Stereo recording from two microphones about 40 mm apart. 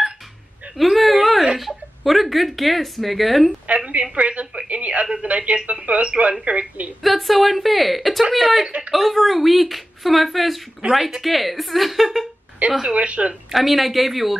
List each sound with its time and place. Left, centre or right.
0.9 s a sound: centre
1.6 s speech: centre
3.6 s a woman's voice: right
7.0 s speech: centre
8.6 s a woman's voice: right
8.9 s speech: centre
12.6 s a woman's voice: right
13.5 s speech: centre